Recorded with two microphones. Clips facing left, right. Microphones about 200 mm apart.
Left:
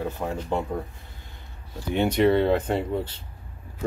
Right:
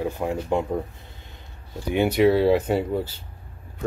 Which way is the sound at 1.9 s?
5° right (ahead or behind).